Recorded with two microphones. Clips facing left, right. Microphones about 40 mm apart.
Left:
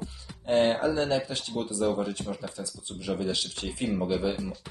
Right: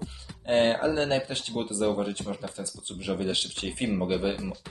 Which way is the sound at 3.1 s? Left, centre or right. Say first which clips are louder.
Right 1 dB; right.